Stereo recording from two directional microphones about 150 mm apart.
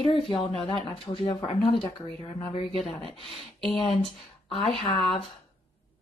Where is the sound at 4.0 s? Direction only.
40° left (ahead or behind).